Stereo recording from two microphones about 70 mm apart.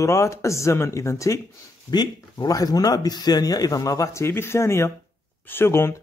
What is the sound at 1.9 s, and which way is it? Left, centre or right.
A man's voice, left.